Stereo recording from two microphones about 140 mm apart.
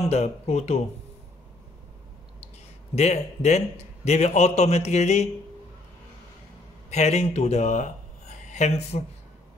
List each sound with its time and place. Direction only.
0.1 s a man's voice: 50° left (ahead or behind)
3.0 s a man's voice: 50° left (ahead or behind)
6.9 s speech: 50° left (ahead or behind)